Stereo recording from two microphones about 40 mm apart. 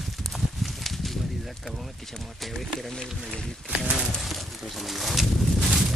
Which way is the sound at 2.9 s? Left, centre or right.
Centre.